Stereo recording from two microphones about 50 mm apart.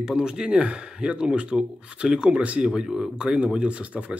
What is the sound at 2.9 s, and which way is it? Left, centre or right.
Speech, centre.